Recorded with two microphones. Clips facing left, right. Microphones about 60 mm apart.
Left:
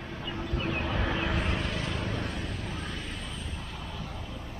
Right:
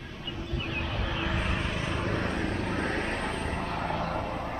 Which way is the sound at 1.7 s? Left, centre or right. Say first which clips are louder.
Right 2 dB; right.